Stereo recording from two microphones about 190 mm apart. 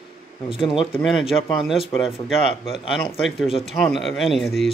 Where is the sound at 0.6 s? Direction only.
25° left (ahead or behind).